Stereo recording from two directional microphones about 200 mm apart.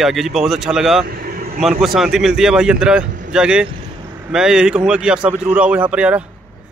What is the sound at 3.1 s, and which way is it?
Vehicle, 40° right (ahead or behind).